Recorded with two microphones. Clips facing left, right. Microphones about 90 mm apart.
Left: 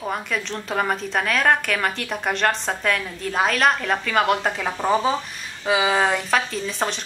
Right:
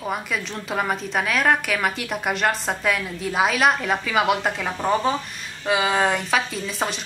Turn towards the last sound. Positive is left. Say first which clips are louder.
# left 1 dB
turn(degrees=-5)  # may be behind; listen again after turning